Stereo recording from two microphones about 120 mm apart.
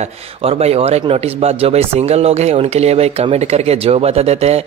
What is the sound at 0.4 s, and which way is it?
Speech, 55° right (ahead or behind).